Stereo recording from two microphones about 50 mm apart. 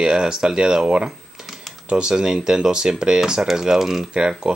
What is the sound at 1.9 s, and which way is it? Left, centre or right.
Speech, centre.